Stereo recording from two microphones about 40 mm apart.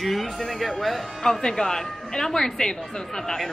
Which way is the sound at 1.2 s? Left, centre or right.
Centre.